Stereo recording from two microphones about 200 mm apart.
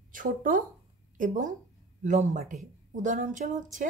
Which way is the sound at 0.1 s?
45° right (ahead or behind).